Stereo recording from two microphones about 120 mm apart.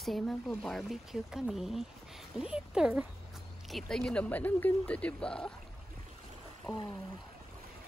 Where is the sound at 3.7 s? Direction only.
5° left (ahead or behind).